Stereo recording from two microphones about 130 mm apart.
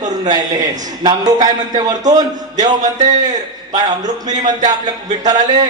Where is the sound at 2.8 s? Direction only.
70° right (ahead or behind).